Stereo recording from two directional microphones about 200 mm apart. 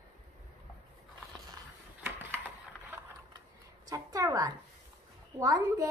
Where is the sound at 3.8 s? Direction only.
15° right (ahead or behind).